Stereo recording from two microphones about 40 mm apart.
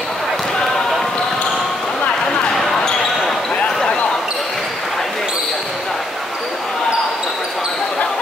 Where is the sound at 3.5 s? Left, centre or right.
Left.